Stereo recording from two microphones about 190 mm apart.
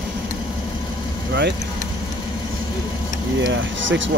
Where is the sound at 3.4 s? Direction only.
75° right (ahead or behind).